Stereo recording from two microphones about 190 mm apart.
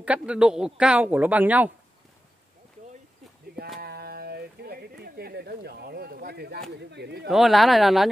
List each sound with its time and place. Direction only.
0.0 s speech: 5° right (ahead or behind)
3.8 s a sound: 55° right (ahead or behind)
6.8 s speech: 65° right (ahead or behind)
7.2 s speech: centre (ahead or behind)